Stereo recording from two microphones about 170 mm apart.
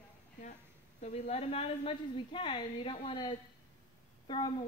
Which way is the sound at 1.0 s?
40° left (ahead or behind).